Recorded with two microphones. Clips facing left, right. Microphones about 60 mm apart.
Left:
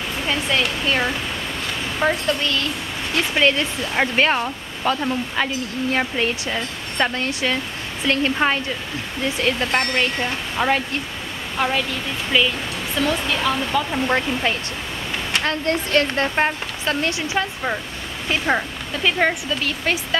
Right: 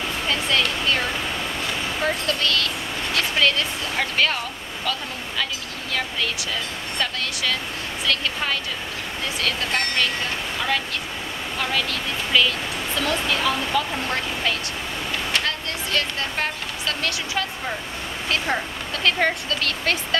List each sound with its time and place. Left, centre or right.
0.3 s speech: centre
15.4 s speech: left; by 20.2 s centre